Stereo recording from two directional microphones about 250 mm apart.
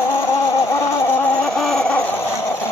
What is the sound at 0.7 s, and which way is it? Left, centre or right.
Fowl, centre.